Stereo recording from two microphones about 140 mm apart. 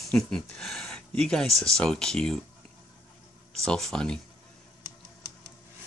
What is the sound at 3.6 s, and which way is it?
Speech, 5° left (ahead or behind).